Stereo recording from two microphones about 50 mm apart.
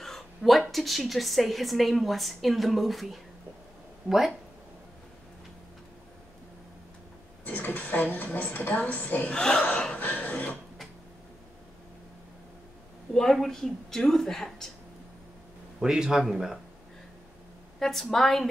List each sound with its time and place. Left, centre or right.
0.0 s a woman's voice: centre
7.4 s a woman's voice: left
9.3 s speech: centre
9.9 s a sound: left
13.1 s speech: centre
15.8 s a man's voice: centre
17.7 s a woman's voice: centre